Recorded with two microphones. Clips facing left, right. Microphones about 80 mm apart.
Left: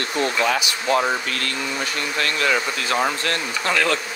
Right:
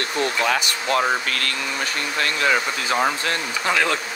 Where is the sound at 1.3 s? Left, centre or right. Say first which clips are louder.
Right 1 dB; right.